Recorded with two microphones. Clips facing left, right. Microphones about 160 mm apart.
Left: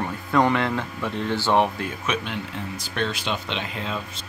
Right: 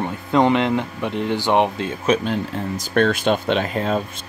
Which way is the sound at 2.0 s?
40° right (ahead or behind).